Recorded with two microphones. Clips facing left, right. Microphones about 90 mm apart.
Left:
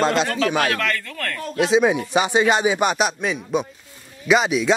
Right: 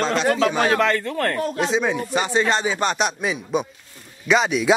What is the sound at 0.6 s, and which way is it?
Speech, 25° right (ahead or behind).